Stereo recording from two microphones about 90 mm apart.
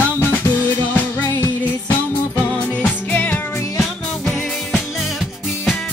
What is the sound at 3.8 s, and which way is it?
Music, centre (ahead or behind).